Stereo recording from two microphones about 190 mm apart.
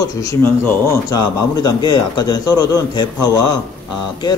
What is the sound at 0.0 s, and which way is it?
A man's voice, 15° left (ahead or behind).